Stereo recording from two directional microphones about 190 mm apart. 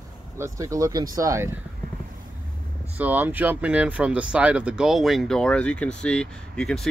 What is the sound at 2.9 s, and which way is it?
Speech, 10° right (ahead or behind).